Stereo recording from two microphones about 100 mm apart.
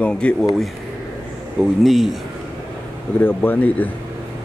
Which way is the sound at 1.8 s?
Centre (ahead or behind).